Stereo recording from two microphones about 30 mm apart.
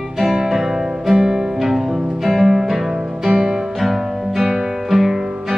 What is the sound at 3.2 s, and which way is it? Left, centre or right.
Music, centre.